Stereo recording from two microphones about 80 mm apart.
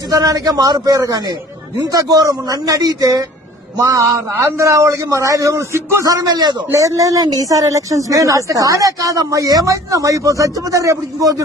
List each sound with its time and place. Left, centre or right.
0.1 s a man's voice: right
6.0 s speech: right
6.7 s speech: right